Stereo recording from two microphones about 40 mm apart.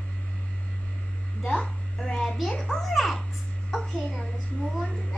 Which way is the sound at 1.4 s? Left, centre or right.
Left.